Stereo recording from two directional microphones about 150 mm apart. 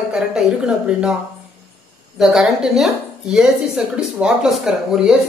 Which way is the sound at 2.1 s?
Centre (ahead or behind).